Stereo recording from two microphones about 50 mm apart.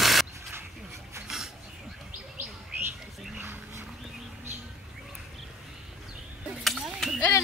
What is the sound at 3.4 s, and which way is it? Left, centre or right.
Dog, right.